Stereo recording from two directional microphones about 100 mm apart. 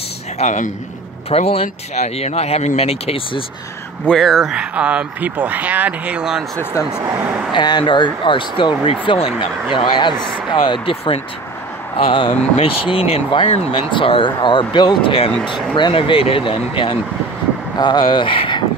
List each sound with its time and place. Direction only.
1.3 s speech: 90° left
4.1 s speech: centre (ahead or behind)
4.6 s speech: 10° right (ahead or behind)
7.5 s speech: 45° left (ahead or behind)
12.1 s speech: 75° left (ahead or behind)
17.7 s speech: 50° left (ahead or behind)